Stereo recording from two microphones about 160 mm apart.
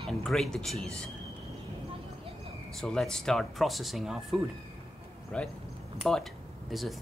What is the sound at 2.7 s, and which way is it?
Speech, centre (ahead or behind).